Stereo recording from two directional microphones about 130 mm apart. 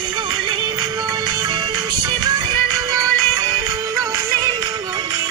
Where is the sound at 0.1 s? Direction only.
35° right (ahead or behind).